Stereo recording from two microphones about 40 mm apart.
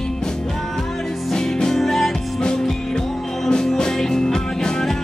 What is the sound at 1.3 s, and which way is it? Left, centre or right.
Music, centre.